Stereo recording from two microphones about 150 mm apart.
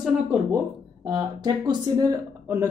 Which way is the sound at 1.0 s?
30° right (ahead or behind).